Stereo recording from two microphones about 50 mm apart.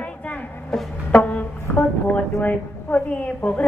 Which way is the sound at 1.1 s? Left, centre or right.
Left.